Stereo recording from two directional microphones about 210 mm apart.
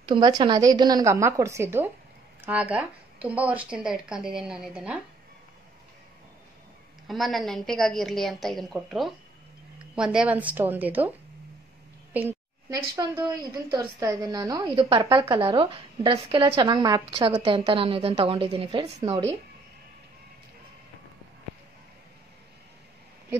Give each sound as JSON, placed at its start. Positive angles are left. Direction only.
{"t": 0.0, "sound": "a woman's voice", "side_deg": -20}
{"t": 7.1, "sound": "a woman's voice", "side_deg": 0}
{"t": 12.1, "sound": "a woman's voice", "side_deg": -10}